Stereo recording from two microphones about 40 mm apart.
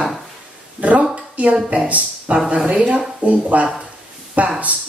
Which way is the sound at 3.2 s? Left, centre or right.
Right.